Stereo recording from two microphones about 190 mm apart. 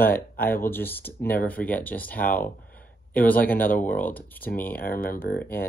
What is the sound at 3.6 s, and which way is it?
Speech, 45° left (ahead or behind).